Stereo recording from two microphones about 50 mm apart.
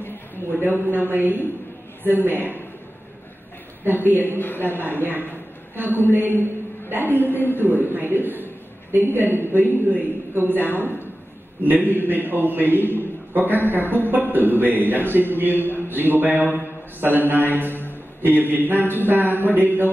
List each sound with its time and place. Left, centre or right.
0.5 s a sound: right
2.0 s a man's voice: right
3.8 s a man's voice: right
4.4 s a woman's voice: left
5.0 s a man's voice: right
7.2 s a woman's voice: left
7.5 s a man's voice: right
15.9 s a sound: right
18.2 s a man's voice: right